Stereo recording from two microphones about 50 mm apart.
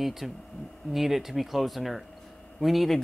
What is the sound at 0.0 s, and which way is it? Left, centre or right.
Speech, centre.